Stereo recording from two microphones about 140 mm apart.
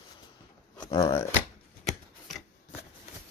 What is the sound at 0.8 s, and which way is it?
Speech, 30° left (ahead or behind).